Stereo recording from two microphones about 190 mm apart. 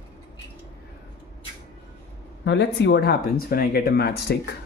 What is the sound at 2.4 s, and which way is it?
Speech, 70° left (ahead or behind).